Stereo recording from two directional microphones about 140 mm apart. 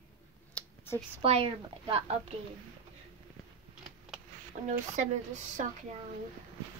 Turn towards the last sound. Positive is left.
turn(degrees=-55)  # may be behind; listen again after turning